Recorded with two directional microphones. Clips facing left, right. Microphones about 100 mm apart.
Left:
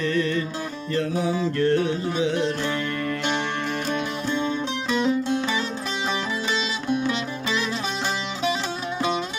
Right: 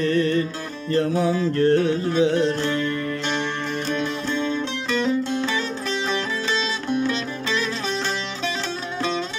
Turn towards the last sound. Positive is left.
turn(degrees=10)  # may be behind; listen again after turning